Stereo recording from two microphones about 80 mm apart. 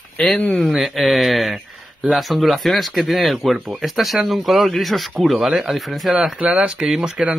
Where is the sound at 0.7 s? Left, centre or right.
Centre.